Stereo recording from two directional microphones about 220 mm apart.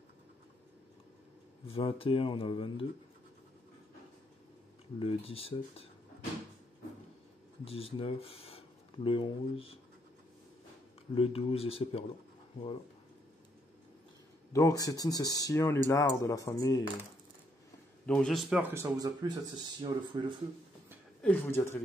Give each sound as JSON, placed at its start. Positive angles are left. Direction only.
{"t": 1.7, "sound": "speech", "side_deg": 25}
{"t": 4.9, "sound": "speech", "side_deg": 25}
{"t": 7.6, "sound": "speech", "side_deg": 25}
{"t": 11.1, "sound": "speech", "side_deg": 25}
{"t": 14.5, "sound": "speech", "side_deg": 15}
{"t": 18.0, "sound": "speech", "side_deg": 0}
{"t": 21.2, "sound": "speech", "side_deg": 10}